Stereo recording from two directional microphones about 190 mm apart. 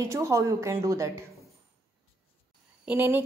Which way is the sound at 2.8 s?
10° right (ahead or behind).